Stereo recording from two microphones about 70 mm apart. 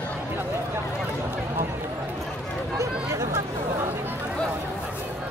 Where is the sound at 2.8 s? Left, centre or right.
Right.